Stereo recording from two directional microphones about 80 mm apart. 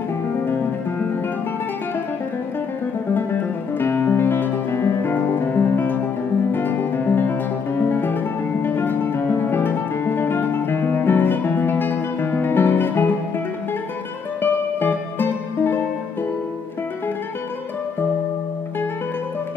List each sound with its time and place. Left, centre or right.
3.7 s music: left
14.4 s music: left